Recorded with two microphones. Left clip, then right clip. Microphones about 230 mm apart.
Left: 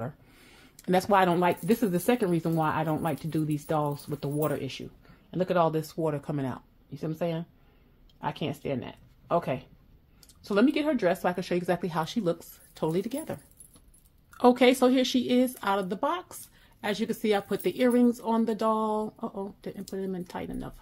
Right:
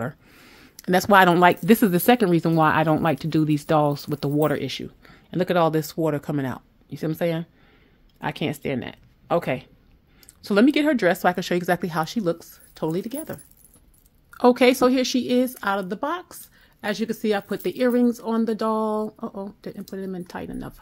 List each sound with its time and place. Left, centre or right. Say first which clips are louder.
0.4 s speech: right 6 dB; right